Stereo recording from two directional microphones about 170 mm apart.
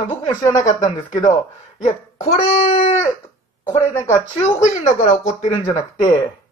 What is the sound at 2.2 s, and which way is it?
Speech, 45° left (ahead or behind).